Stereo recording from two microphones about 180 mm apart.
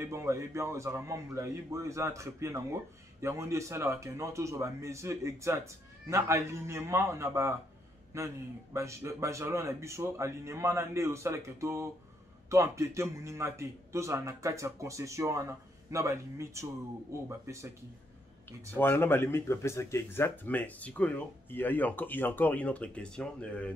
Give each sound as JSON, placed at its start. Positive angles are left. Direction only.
{"t": 0.0, "sound": "speech", "side_deg": -15}
{"t": 18.8, "sound": "speech", "side_deg": 10}